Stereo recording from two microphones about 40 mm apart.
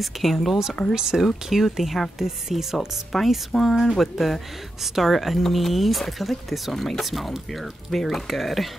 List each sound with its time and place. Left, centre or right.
0.0 s speech: centre
0.9 s speech: centre
1.5 s speech: centre
3.1 s speech: centre